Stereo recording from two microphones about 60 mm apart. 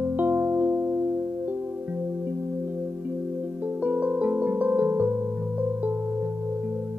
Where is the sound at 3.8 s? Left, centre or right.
Right.